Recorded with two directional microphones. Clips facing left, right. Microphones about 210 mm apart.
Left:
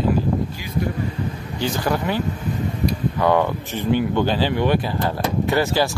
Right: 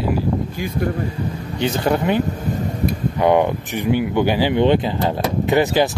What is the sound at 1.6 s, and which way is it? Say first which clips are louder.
Speech: right 4 dB; 25° right (ahead or behind).